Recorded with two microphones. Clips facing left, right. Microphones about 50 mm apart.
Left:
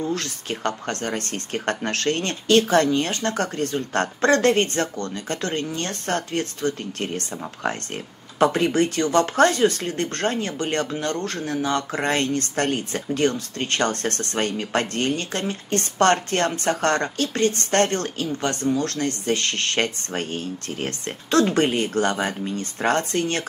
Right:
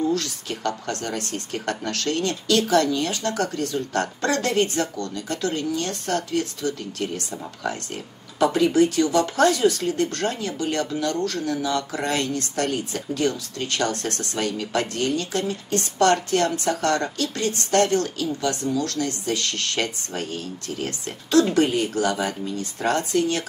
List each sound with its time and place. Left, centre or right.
0.0 s speech: left